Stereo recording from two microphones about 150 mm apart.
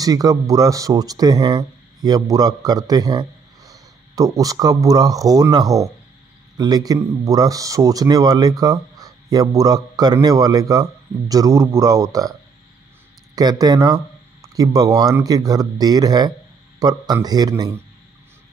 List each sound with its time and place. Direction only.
0.0 s a man's voice: 25° right (ahead or behind)